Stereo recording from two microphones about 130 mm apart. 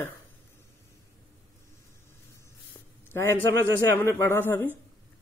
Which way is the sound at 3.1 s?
20° left (ahead or behind).